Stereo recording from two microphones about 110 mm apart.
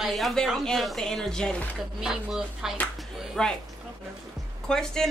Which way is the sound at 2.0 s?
5° right (ahead or behind).